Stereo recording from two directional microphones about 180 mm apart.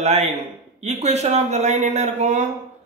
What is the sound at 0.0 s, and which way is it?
Speech, 40° right (ahead or behind).